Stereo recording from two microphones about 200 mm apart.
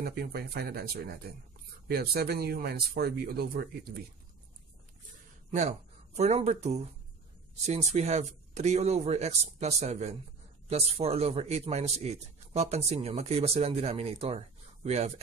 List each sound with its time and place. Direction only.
0.0 s speech: 50° right (ahead or behind)
5.5 s speech: 35° right (ahead or behind)